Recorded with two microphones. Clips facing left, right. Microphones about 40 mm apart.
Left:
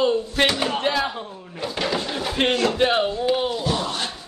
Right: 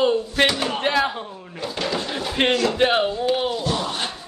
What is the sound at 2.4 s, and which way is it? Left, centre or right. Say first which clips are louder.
Speech: right 1 dB; centre.